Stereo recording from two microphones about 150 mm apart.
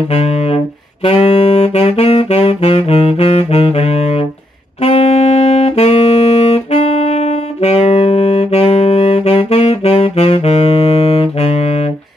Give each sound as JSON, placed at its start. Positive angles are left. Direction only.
{"t": 0.1, "sound": "music", "side_deg": 45}
{"t": 1.0, "sound": "saxophone", "side_deg": 40}